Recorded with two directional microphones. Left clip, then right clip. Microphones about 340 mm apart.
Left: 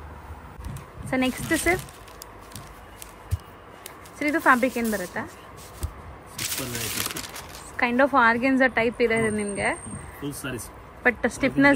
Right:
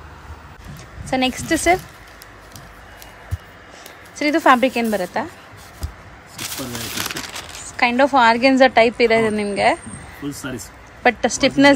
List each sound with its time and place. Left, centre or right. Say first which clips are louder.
1.1 s a woman's voice: right 5 dB; centre
4.2 s a woman's voice: right 6 dB; centre
7.7 s a woman's voice: right 5 dB; centre